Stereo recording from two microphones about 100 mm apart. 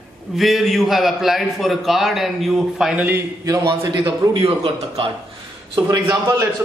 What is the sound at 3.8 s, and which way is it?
A man's voice, 45° right (ahead or behind).